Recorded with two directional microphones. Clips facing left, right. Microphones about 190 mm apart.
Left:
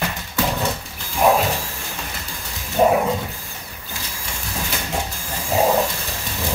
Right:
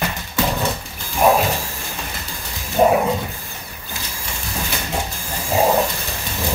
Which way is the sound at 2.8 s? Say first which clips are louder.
Right 1 dB; 45° right (ahead or behind).